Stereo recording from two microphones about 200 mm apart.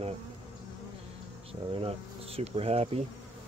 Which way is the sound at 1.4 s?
30° right (ahead or behind).